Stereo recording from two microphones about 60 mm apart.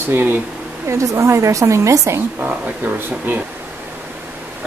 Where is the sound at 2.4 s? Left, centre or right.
Right.